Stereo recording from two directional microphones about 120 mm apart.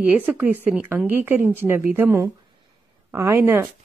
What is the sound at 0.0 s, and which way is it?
A woman's voice, 10° right (ahead or behind).